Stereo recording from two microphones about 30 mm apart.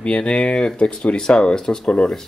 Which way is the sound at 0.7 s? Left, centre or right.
Left.